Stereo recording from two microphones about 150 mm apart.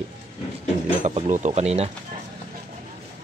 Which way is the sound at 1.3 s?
50° right (ahead or behind).